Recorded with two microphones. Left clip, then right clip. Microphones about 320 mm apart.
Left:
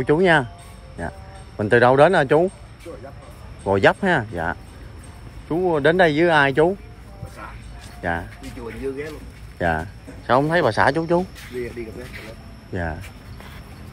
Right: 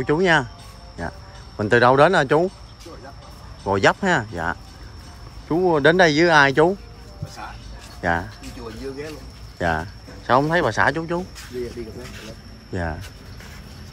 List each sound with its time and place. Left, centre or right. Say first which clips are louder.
0.0 s speech: left 1 dB; centre
1.6 s speech: left 1 dB; centre
3.6 s speech: left 1 dB; centre
8.0 s speech: right 3 dB; centre
9.6 s speech: left 1 dB; centre